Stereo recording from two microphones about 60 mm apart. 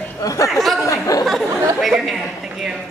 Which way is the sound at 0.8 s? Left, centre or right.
Left.